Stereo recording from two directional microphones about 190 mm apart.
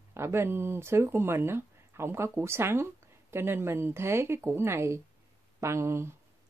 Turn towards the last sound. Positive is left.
turn(degrees=-15)  # may be behind; listen again after turning